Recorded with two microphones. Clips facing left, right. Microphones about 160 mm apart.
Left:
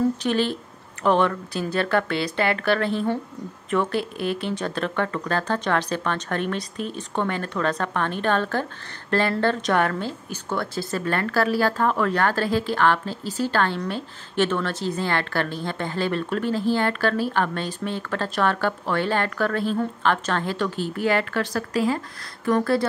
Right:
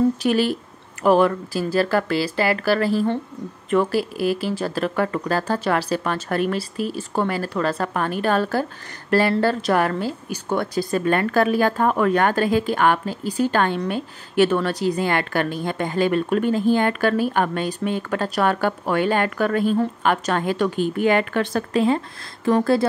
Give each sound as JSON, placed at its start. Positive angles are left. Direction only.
{"t": 0.2, "sound": "a woman's voice", "side_deg": -10}